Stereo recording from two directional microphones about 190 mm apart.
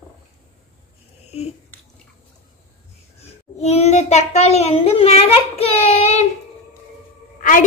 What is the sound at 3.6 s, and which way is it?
Child singing, 35° left (ahead or behind).